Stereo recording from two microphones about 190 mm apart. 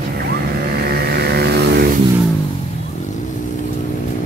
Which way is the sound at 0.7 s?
55° right (ahead or behind).